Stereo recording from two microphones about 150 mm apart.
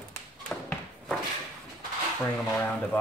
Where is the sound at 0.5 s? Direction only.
Centre (ahead or behind).